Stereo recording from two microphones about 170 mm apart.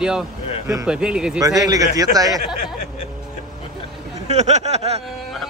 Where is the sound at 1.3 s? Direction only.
20° right (ahead or behind).